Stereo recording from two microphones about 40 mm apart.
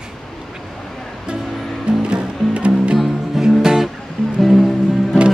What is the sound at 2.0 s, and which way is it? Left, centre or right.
Music, right.